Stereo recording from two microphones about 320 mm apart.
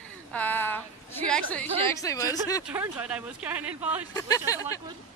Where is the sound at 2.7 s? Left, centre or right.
Centre.